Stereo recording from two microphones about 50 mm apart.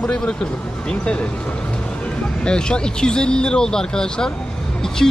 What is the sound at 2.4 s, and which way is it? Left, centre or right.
Speech, centre.